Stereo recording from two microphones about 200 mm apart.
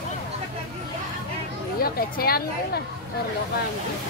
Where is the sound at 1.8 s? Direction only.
50° left (ahead or behind).